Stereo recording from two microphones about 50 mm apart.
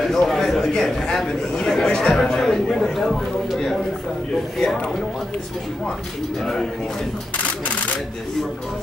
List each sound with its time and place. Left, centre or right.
0.0 s speech: centre
6.4 s speech: centre
7.3 s single-lens reflex camera: left